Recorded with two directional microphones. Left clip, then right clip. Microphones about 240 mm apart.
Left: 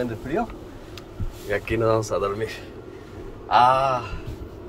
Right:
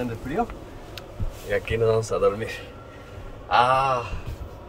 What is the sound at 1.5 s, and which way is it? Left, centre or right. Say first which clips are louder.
Speech: even; centre.